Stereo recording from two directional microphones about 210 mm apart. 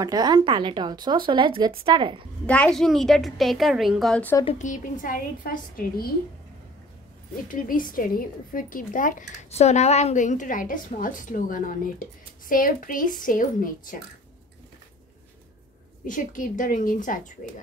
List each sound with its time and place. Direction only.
0.0 s speech: 20° right (ahead or behind)
2.4 s a woman's voice: 5° left (ahead or behind)
4.5 s a woman's voice: 35° left (ahead or behind)
7.4 s a woman's voice: 40° left (ahead or behind)
16.1 s a woman's voice: 40° left (ahead or behind)